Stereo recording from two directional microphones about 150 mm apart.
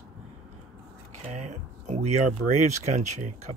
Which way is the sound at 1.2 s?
50° right (ahead or behind).